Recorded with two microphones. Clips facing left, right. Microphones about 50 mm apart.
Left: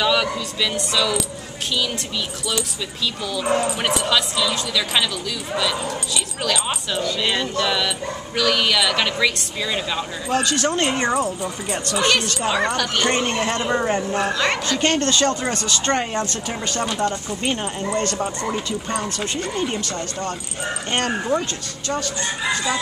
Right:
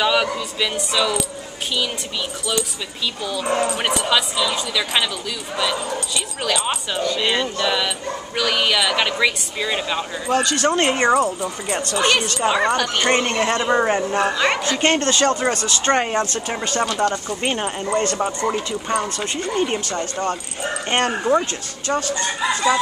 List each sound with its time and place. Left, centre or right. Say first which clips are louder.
0.0 s speech: right 1 dB; centre
3.4 s speech: even; centre
6.4 s speech: right 2 dB; centre
10.7 s speech: right 7 dB; centre
13.2 s speech: right 2 dB; right
13.7 s speech: right 3 dB; centre